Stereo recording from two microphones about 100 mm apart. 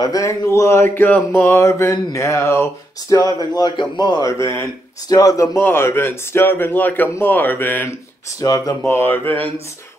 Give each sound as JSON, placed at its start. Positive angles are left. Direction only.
{"t": 0.0, "sound": "speech", "side_deg": 35}
{"t": 8.4, "sound": "speech", "side_deg": 35}